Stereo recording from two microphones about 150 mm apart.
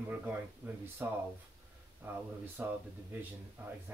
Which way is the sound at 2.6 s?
10° right (ahead or behind).